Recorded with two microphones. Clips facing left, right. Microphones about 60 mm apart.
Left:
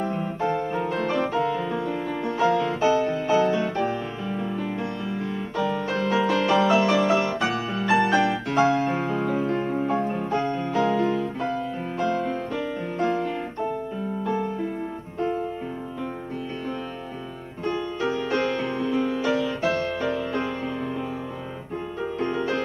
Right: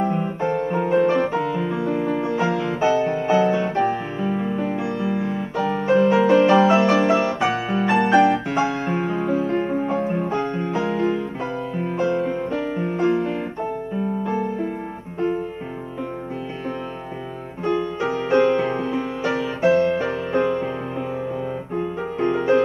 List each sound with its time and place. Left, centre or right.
0.0 s music: right
5.6 s music: right
15.1 s music: right
17.6 s music: right
20.3 s music: centre
21.7 s music: right